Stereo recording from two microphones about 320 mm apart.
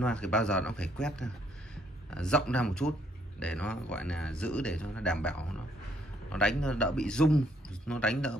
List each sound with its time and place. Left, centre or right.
0.0 s speech: centre